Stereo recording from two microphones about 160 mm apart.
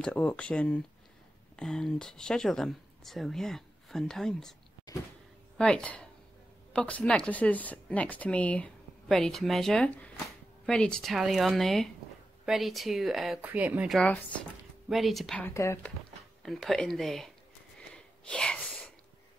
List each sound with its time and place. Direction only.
0.0 s speech: 10° left (ahead or behind)
4.9 s power windows: 25° left (ahead or behind)
5.6 s speech: 5° left (ahead or behind); by 13.9 s 10° right (ahead or behind)
13.9 s speech: 10° left (ahead or behind)
15.4 s speech: 15° left (ahead or behind)
16.4 s speech: centre (ahead or behind)
17.7 s a sound: 5° left (ahead or behind)